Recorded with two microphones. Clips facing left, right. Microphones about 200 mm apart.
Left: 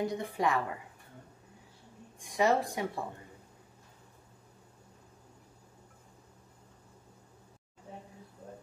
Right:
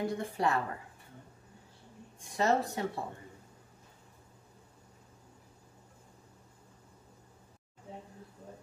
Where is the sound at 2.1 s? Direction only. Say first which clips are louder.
Left 1 dB; 15° left (ahead or behind).